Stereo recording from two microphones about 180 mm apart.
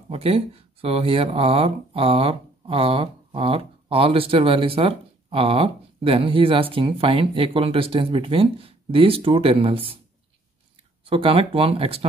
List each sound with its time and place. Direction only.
0.1 s speech: 35° right (ahead or behind)
11.1 s speech: 30° right (ahead or behind)